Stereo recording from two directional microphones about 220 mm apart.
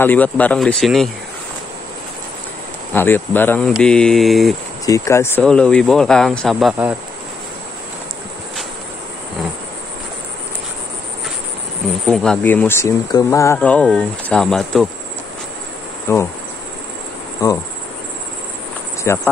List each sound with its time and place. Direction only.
0.0 s speech: 5° left (ahead or behind)
2.9 s speech: 10° left (ahead or behind)
4.8 s speech: 15° left (ahead or behind); by 7.0 s 5° right (ahead or behind)
12.1 s speech: 5° left (ahead or behind)
16.1 s insect: 10° left (ahead or behind)
17.4 s insect: 15° left (ahead or behind)
19.1 s insect: 10° left (ahead or behind)